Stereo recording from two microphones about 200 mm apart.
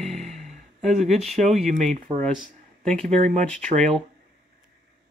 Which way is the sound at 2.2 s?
5° left (ahead or behind).